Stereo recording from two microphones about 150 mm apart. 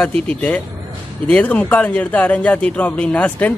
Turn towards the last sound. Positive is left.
turn(degrees=10)  # may be behind; listen again after turning